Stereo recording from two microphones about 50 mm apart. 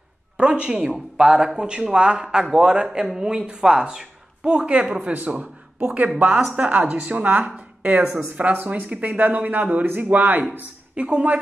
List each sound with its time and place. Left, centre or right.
0.4 s a man's voice: centre
5.1 s speech: right
11.0 s speech: right